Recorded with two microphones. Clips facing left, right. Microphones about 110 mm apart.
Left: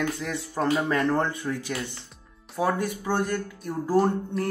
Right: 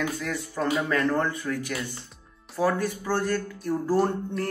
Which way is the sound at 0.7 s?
30° left (ahead or behind).